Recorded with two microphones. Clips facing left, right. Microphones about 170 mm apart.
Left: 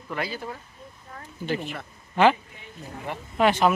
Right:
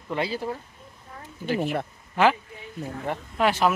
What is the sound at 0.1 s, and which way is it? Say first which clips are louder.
Speech: right 4 dB; 30° right (ahead or behind).